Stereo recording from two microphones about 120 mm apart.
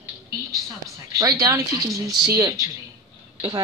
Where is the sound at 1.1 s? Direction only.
30° right (ahead or behind).